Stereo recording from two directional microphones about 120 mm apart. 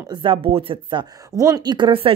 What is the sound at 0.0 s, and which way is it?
A woman's voice, 40° right (ahead or behind).